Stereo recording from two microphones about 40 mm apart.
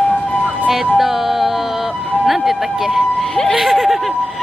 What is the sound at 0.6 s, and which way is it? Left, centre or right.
Music, centre.